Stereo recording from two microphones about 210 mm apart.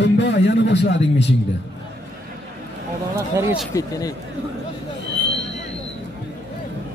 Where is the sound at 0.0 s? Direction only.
55° left (ahead or behind).